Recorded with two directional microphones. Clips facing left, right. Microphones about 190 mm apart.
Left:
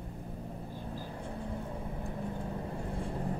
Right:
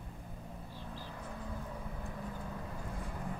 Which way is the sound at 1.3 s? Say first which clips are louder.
Left 4 dB; 30° left (ahead or behind).